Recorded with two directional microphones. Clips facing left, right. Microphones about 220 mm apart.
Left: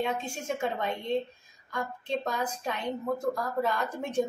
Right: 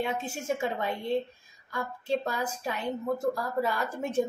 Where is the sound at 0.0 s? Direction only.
5° right (ahead or behind).